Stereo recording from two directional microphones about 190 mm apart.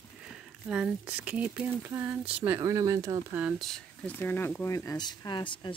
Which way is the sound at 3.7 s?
10° left (ahead or behind).